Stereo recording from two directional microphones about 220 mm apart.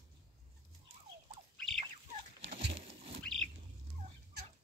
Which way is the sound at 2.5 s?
55° right (ahead or behind).